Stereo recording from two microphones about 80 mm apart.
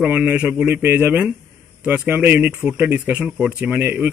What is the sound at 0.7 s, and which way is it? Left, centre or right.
Speech, right.